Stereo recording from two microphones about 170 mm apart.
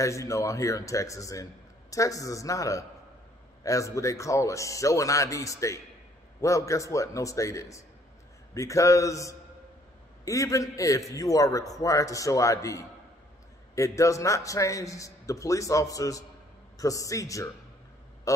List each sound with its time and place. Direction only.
0.0 s a man's voice: 20° left (ahead or behind)